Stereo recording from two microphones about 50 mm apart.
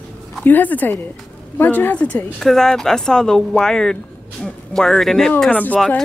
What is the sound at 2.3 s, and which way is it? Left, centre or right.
Speech, centre.